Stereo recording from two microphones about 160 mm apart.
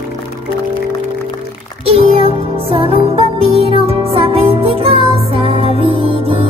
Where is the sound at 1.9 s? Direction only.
35° right (ahead or behind).